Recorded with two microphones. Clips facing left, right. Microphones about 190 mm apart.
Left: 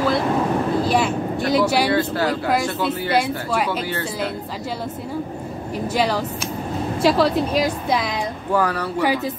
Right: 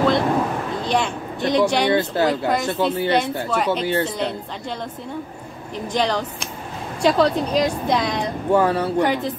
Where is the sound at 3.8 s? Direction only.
25° right (ahead or behind).